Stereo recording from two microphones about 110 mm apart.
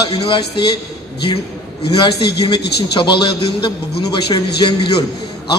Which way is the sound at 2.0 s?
45° left (ahead or behind).